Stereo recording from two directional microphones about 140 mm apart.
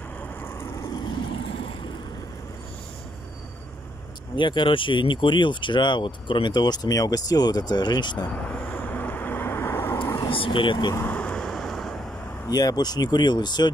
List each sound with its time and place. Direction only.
0.4 s vehicle: 20° left (ahead or behind); by 1.7 s 35° left (ahead or behind)
4.4 s speech: 35° left (ahead or behind)
8.3 s vehicle: 10° left (ahead or behind)
10.1 s speech: 35° left (ahead or behind)
11.0 s vehicle: 10° left (ahead or behind)
12.4 s speech: 30° left (ahead or behind)